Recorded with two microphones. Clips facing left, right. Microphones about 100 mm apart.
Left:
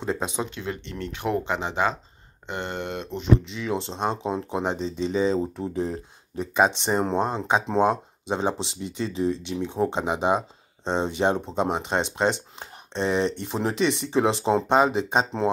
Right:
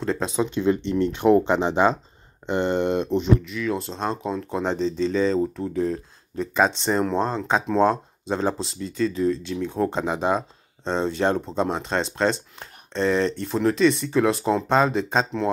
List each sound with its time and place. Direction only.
0.0 s speech: 10° left (ahead or behind)
0.5 s speech: 25° right (ahead or behind)
3.3 s speech: 25° left (ahead or behind)